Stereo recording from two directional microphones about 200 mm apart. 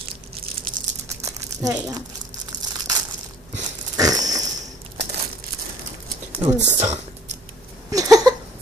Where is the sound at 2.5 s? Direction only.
40° right (ahead or behind).